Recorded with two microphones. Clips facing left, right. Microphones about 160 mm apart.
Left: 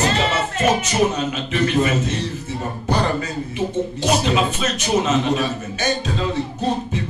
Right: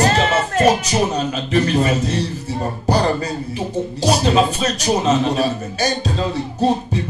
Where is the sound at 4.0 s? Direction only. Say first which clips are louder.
Right 4 dB; 35° right (ahead or behind).